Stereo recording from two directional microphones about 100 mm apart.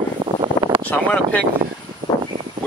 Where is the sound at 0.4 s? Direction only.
50° right (ahead or behind).